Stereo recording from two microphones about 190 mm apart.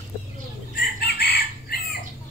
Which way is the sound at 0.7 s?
55° left (ahead or behind).